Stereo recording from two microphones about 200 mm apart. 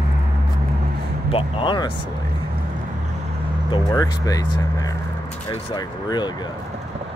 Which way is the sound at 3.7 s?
20° left (ahead or behind).